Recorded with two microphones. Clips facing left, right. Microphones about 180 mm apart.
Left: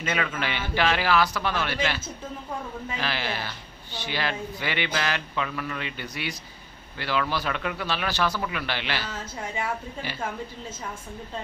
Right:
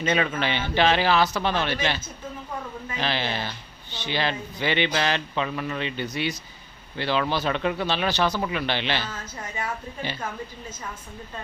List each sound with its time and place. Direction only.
0.0 s speech: 25° right (ahead or behind)
3.0 s speech: 25° right (ahead or behind)